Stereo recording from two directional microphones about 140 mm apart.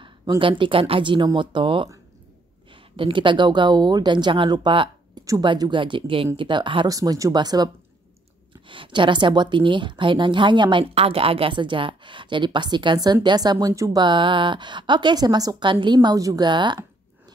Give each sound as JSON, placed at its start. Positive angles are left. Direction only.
{"t": 0.4, "sound": "a woman's voice", "side_deg": -40}
{"t": 6.9, "sound": "a woman's voice", "side_deg": -25}